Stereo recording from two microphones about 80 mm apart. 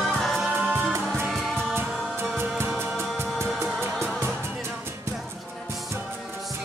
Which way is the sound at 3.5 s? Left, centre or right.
Centre.